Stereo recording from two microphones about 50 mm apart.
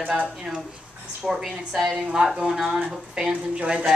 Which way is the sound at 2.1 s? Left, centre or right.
Centre.